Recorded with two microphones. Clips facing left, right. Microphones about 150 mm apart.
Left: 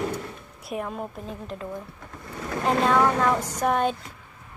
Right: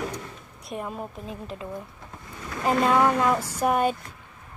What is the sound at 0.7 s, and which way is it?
Speech, centre (ahead or behind).